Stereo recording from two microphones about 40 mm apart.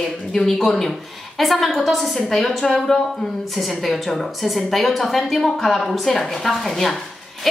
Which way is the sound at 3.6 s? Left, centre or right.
Centre.